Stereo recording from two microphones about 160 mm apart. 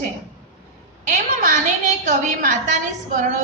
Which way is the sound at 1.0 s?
50° right (ahead or behind).